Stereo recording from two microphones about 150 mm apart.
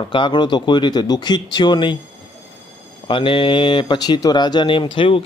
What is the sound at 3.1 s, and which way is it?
Speech, 35° left (ahead or behind).